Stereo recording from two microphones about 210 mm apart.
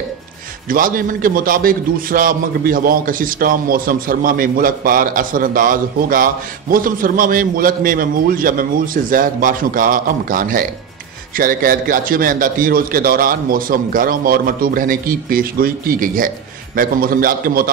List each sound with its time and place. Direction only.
0.7 s a man's voice: 40° right (ahead or behind)